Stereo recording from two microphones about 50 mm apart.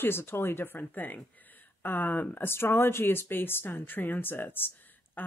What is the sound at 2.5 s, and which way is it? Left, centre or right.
Speech, left.